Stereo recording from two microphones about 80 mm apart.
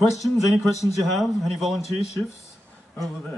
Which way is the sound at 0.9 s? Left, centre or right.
Centre.